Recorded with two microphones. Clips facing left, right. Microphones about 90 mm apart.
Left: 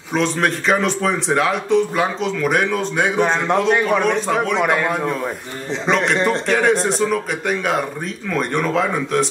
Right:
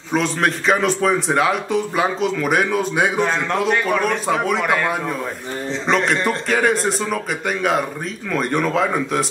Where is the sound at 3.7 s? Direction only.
15° left (ahead or behind).